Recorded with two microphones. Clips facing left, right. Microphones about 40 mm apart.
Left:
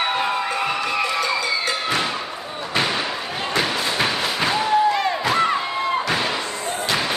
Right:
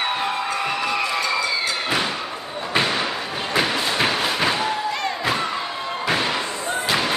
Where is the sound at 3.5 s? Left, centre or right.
Centre.